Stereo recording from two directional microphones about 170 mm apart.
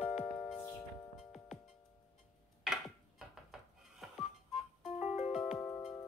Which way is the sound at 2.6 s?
5° right (ahead or behind).